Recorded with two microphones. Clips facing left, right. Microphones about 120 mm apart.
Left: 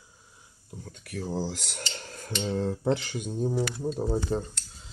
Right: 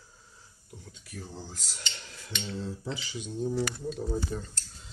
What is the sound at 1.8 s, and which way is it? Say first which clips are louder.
Cutlery: left 5 dB; 45° left (ahead or behind).